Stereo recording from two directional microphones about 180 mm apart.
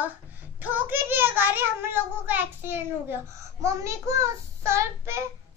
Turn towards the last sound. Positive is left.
turn(degrees=-15)  # may be behind; listen again after turning